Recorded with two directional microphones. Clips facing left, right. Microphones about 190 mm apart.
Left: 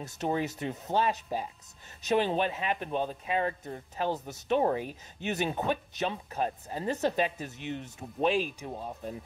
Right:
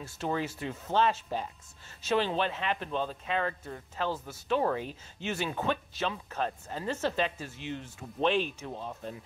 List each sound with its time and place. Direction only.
0.2 s speech: 20° left (ahead or behind)
8.2 s speech: 5° left (ahead or behind)